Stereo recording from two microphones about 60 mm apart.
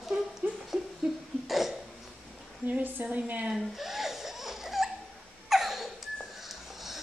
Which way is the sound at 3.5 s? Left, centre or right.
Centre.